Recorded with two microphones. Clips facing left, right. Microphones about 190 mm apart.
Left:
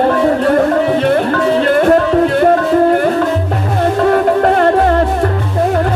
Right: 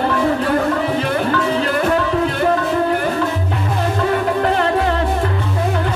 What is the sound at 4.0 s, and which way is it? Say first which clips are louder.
Music: left 7 dB; 50° left (ahead or behind).